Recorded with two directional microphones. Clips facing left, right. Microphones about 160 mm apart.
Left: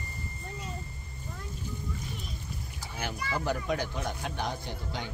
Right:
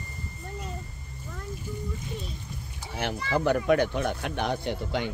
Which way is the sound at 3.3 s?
65° right (ahead or behind).